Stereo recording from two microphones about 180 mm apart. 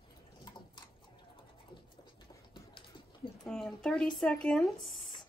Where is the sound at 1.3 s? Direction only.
25° left (ahead or behind).